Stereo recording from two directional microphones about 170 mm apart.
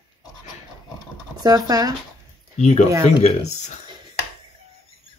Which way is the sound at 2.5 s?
40° left (ahead or behind).